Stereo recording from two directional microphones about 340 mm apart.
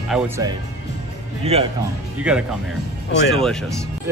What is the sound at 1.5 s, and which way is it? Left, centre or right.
Speech, centre.